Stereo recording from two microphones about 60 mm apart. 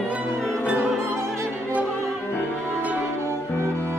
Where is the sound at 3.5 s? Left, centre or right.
Left.